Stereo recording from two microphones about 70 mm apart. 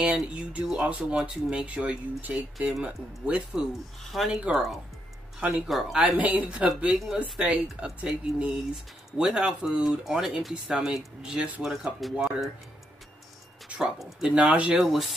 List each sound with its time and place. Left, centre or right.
0.0 s speech: centre
4.1 s speech: centre; by 6.6 s right
6.6 s speech: centre
13.7 s speech: centre
14.8 s speech: centre